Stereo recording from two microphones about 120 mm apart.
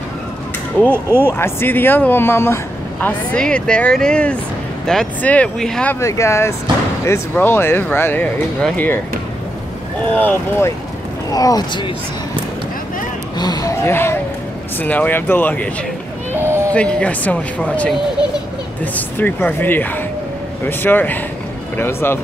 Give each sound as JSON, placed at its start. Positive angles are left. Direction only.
{"t": 0.9, "sound": "speech", "side_deg": -15}
{"t": 1.3, "sound": "speech", "side_deg": 20}
{"t": 5.9, "sound": "speech", "side_deg": 25}
{"t": 10.1, "sound": "speech", "side_deg": 15}
{"t": 11.3, "sound": "speech", "side_deg": 30}
{"t": 13.4, "sound": "speech", "side_deg": 30}
{"t": 16.3, "sound": "a sound", "side_deg": -20}
{"t": 16.7, "sound": "speech", "side_deg": 10}